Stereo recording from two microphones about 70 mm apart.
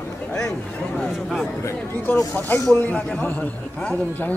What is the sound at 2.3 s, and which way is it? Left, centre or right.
A man's voice, left.